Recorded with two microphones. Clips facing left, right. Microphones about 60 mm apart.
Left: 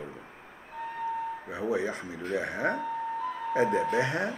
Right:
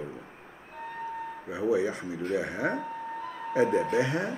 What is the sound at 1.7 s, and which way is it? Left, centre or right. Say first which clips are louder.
Speech: right 3 dB; left.